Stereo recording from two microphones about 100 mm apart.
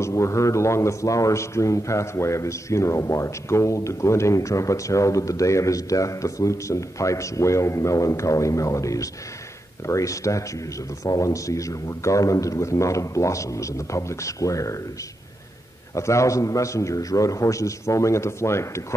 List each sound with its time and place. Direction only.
0.0 s a man's voice: 30° left (ahead or behind)
15.9 s a man's voice: 30° left (ahead or behind)